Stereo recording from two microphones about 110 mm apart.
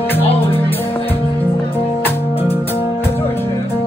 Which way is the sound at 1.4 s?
20° left (ahead or behind).